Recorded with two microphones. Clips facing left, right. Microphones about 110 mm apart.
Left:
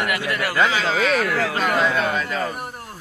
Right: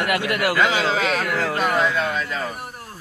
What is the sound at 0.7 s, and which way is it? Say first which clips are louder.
Speech: even; 25° right (ahead or behind).